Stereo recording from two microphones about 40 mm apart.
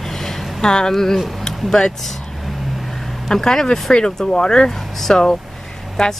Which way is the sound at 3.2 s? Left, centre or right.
Centre.